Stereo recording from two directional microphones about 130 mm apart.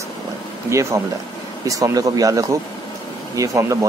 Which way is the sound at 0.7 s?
20° right (ahead or behind).